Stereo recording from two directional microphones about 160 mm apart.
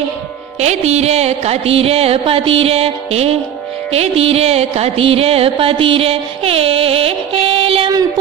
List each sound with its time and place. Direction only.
0.6 s music: 45° right (ahead or behind)